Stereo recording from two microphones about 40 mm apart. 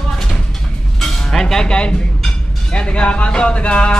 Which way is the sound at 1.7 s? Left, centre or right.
Left.